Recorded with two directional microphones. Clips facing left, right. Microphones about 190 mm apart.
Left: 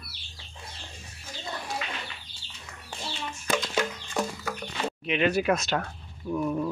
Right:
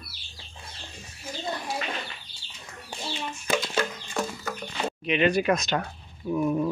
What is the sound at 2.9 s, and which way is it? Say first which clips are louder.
Chicken: right 2 dB; 10° right (ahead or behind).